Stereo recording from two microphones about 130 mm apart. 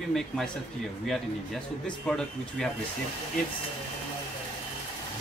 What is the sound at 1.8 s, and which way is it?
Speech, 5° left (ahead or behind).